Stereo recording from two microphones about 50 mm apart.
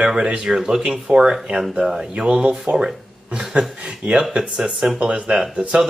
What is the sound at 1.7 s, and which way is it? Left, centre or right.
Speech, centre.